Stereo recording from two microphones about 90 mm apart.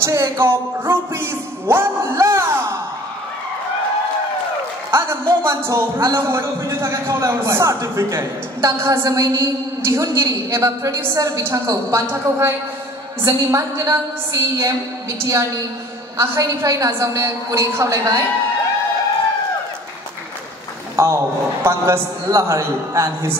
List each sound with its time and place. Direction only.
0.0 s music: 35° right (ahead or behind)
4.9 s a man's voice: 30° right (ahead or behind)
20.9 s a man's voice: 35° right (ahead or behind)